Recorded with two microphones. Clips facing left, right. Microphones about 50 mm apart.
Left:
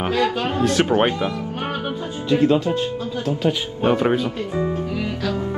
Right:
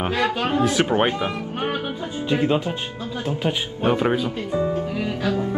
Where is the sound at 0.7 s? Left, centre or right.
Centre.